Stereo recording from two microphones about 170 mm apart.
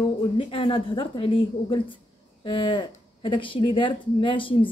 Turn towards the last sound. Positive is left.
turn(degrees=30)  # may be behind; listen again after turning